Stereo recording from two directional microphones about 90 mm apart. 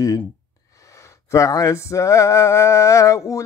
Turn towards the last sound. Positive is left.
turn(degrees=35)  # may be behind; listen again after turning